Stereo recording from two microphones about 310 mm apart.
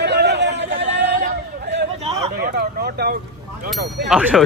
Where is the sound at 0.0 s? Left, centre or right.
Right.